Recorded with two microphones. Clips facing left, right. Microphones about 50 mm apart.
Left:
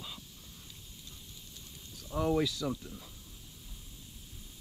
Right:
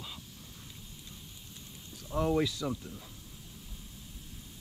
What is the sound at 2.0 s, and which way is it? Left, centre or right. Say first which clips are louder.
Speech: right 1 dB; centre.